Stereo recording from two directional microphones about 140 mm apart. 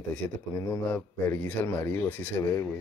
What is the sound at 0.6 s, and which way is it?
A man's voice, 20° left (ahead or behind).